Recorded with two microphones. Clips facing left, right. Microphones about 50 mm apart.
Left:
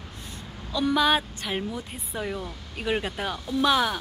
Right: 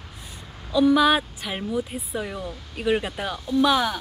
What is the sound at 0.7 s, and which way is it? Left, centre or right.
Speech, centre.